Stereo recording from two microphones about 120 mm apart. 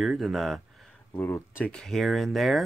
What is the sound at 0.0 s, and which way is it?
Speech, centre (ahead or behind).